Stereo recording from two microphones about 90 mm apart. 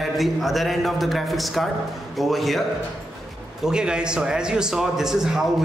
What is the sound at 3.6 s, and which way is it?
A man's voice, 10° right (ahead or behind).